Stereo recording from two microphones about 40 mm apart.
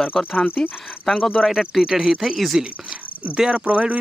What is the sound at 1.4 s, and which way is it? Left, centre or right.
Speech, centre.